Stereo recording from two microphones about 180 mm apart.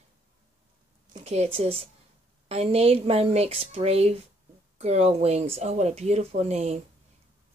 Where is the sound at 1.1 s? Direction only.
35° right (ahead or behind).